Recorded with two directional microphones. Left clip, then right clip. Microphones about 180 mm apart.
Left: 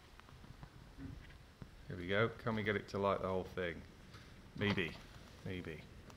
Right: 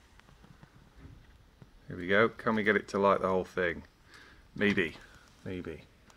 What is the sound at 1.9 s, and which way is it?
Speech, 40° left (ahead or behind).